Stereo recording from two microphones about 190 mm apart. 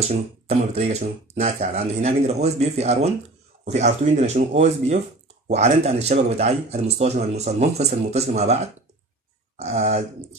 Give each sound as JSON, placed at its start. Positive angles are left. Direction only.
{"t": 0.1, "sound": "speech", "side_deg": -35}